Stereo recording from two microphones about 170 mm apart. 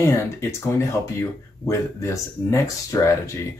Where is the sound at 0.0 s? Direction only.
15° left (ahead or behind).